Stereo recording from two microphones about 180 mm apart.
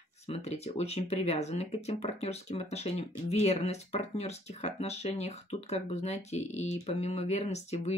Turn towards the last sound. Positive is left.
turn(degrees=35)  # may be behind; listen again after turning